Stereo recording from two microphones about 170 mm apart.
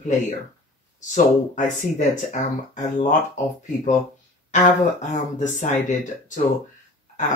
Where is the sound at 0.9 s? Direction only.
45° left (ahead or behind).